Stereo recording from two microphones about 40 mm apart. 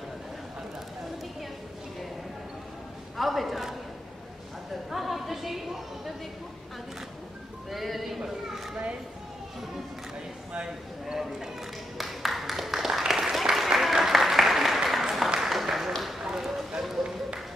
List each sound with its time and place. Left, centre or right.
3.2 s a woman's voice: centre
4.9 s a woman's voice: centre
7.7 s a woman's voice: centre
11.1 s speech: centre
12.0 s a sound: centre
13.0 s applause: centre
15.4 s a sound: centre
16.3 s run: centre